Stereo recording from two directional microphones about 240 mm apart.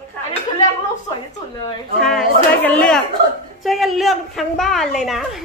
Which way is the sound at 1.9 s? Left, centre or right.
Centre.